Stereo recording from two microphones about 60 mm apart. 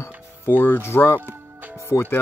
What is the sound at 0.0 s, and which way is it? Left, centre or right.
Speech, left.